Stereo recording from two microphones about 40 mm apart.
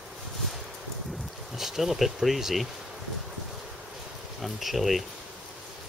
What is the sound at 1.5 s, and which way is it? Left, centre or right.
Speech, centre.